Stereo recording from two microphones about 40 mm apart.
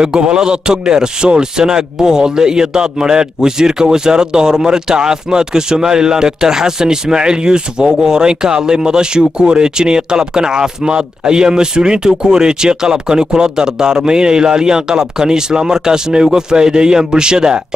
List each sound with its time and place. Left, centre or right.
0.0 s a man's voice: right